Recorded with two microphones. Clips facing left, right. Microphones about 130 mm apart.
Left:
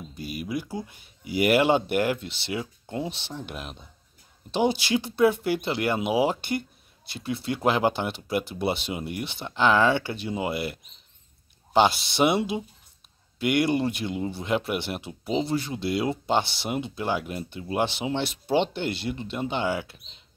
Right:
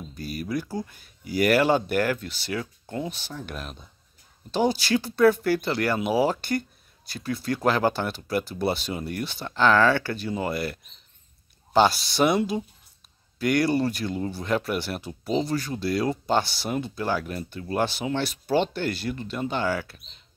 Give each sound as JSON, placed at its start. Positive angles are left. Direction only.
{"t": 0.3, "sound": "speech", "side_deg": 10}